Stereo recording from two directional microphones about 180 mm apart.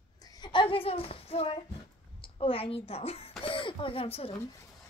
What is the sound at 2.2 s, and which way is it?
A woman's voice, 30° left (ahead or behind).